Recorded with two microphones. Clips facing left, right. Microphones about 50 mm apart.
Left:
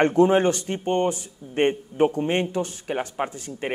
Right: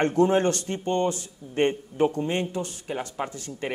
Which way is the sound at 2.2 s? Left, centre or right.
Left.